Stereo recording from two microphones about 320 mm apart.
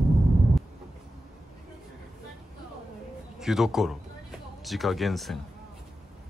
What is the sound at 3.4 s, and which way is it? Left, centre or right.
Speech, centre.